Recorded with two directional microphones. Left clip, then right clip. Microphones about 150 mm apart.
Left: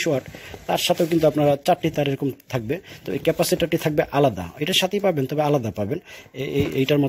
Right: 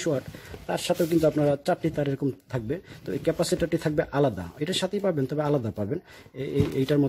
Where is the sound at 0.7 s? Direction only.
5° left (ahead or behind).